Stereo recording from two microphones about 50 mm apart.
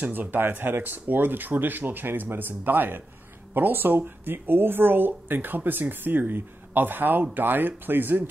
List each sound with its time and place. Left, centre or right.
0.0 s speech: right